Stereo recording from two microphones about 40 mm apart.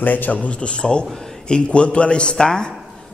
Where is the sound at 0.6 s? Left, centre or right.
Left.